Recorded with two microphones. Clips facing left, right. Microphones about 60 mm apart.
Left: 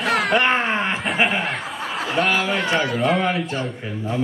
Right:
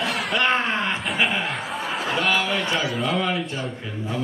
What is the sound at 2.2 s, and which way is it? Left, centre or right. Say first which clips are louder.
Speech: left 3 dB; centre.